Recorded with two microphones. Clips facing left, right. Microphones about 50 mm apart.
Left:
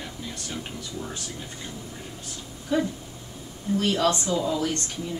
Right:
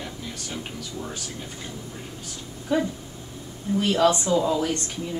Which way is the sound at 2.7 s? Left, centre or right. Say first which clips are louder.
Right 1 dB; centre.